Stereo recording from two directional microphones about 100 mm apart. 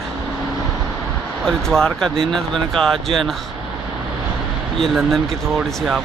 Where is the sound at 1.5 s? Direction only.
5° left (ahead or behind).